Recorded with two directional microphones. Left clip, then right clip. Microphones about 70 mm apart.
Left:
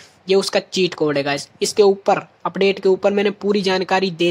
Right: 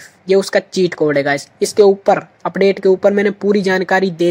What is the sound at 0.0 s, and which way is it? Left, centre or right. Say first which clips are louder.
Speech: right 3 dB; centre.